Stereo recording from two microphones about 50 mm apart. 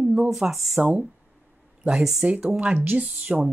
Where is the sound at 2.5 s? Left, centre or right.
Right.